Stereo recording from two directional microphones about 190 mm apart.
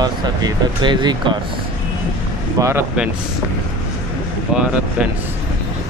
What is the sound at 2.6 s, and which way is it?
Speech, 10° right (ahead or behind).